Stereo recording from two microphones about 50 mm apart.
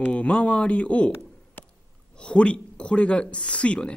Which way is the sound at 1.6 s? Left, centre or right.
Left.